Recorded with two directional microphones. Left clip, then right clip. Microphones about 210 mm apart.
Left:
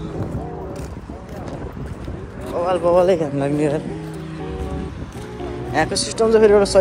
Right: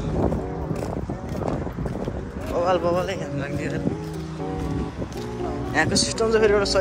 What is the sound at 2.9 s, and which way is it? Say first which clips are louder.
Speech: left 10 dB; 10° left (ahead or behind).